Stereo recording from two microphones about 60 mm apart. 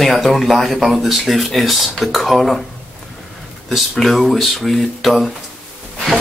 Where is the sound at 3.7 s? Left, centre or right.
Centre.